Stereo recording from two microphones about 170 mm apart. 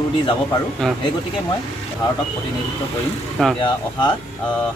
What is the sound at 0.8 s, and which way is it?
Speech, centre (ahead or behind).